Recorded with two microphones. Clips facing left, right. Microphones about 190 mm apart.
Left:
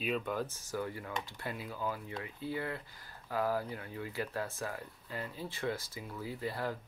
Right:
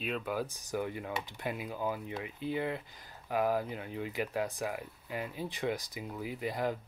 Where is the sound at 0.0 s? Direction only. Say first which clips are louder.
Even; centre (ahead or behind).